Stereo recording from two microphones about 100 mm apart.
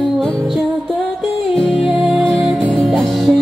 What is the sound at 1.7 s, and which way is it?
Music, 5° right (ahead or behind).